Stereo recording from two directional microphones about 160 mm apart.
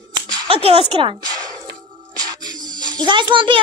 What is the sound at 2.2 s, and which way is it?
Music, 25° right (ahead or behind).